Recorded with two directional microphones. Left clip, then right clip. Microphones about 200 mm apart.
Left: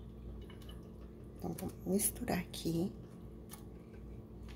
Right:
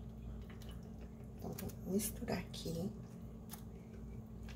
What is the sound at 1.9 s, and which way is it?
Speech, 55° left (ahead or behind).